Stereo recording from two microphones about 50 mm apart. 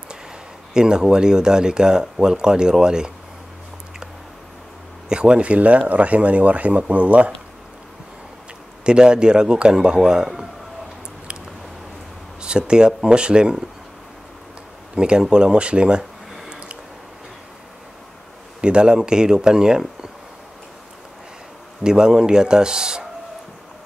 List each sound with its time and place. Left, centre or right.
0.7 s speech: centre
5.1 s speech: centre
8.8 s speech: centre
12.4 s speech: centre
15.0 s speech: centre
16.4 s a sound: right
18.6 s speech: centre
21.8 s speech: centre